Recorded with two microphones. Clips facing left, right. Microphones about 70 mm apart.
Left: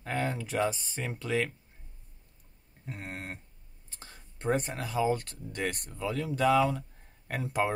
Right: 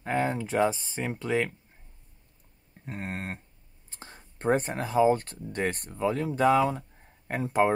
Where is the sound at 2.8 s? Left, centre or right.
Right.